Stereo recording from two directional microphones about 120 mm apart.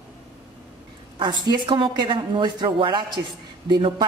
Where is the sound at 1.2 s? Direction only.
35° right (ahead or behind).